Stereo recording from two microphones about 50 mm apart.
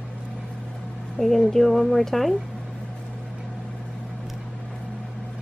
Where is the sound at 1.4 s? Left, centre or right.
Centre.